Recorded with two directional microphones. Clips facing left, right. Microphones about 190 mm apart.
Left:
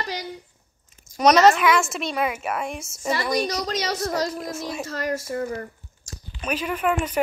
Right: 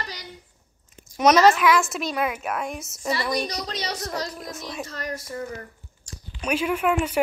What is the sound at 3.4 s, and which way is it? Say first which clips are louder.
A woman's voice: left 5 dB; 45° left (ahead or behind).